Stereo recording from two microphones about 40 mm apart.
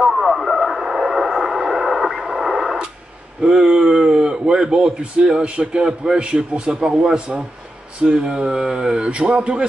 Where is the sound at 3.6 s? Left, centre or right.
Centre.